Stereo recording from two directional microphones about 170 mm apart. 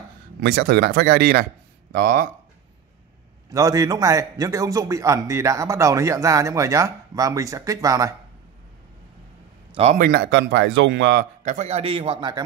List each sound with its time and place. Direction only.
0.4 s speech: 70° right (ahead or behind)
3.5 s a man's voice: 20° right (ahead or behind)
9.9 s speech: 65° right (ahead or behind); by 11.2 s 85° right
11.4 s a man's voice: 45° right (ahead or behind); by 12.4 s 25° right (ahead or behind)